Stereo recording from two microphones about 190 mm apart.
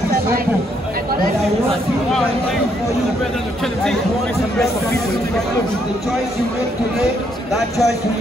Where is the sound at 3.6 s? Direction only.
Centre (ahead or behind).